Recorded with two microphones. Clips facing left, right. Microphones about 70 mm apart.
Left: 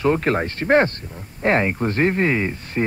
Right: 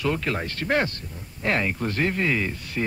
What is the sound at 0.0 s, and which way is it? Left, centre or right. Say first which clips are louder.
Speech: left 7 dB; left.